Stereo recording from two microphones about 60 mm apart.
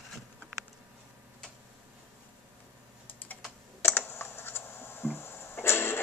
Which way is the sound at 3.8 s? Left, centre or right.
Left.